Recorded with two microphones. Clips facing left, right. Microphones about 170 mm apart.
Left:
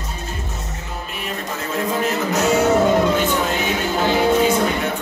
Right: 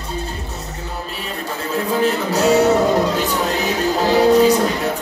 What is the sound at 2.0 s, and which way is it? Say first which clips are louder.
Music: right 3 dB; 35° right (ahead or behind).